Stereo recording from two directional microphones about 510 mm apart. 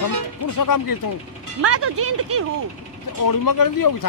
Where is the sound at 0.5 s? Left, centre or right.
Left.